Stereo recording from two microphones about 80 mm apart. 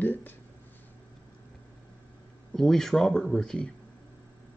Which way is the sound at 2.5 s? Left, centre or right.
Centre.